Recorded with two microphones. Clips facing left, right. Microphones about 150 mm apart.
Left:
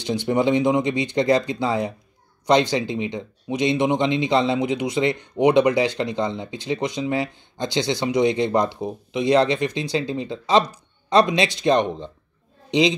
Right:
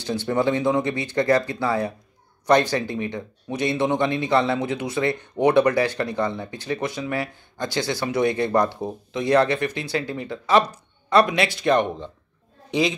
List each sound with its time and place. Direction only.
0.0 s speech: 15° left (ahead or behind)